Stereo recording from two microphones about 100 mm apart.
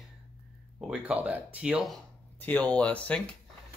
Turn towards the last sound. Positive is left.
turn(degrees=15)  # may be behind; listen again after turning